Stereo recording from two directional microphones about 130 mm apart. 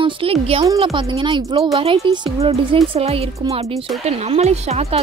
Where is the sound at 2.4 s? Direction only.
50° right (ahead or behind).